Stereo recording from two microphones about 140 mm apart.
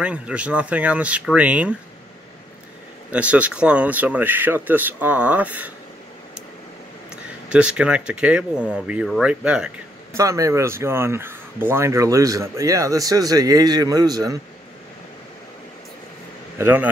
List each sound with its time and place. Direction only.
0.0 s speech: 10° right (ahead or behind)
3.1 s speech: 10° right (ahead or behind)
7.4 s speech: 5° right (ahead or behind)
10.1 s speech: 25° right (ahead or behind)
16.5 s a man's voice: 15° right (ahead or behind)